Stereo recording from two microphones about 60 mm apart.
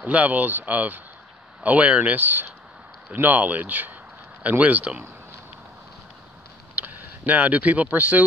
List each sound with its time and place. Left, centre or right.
0.0 s speech: right
6.7 s speech: right